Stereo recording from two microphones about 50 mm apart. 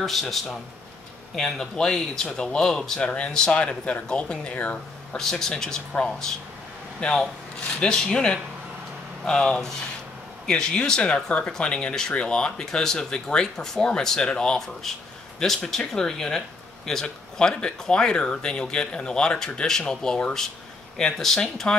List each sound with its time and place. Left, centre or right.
0.0 s speech: centre
14.8 s speech: centre